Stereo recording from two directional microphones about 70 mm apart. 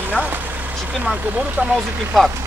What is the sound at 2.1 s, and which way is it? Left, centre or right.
Speech, centre.